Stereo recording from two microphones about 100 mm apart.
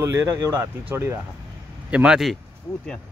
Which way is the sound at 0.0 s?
30° right (ahead or behind).